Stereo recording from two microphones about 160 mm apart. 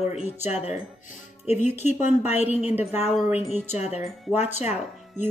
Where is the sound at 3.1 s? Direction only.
Centre (ahead or behind).